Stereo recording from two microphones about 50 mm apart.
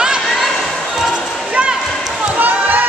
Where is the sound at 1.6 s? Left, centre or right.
Right.